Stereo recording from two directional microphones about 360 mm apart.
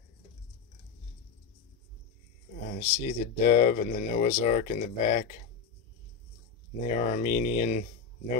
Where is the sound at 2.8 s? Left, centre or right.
Left.